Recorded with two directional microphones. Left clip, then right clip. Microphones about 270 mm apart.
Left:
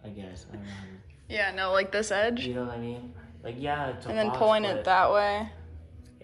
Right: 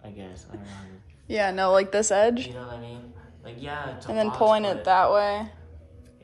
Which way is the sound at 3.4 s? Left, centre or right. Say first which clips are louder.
Left 4 dB; left.